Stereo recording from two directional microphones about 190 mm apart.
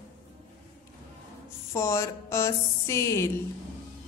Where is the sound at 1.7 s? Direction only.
15° left (ahead or behind).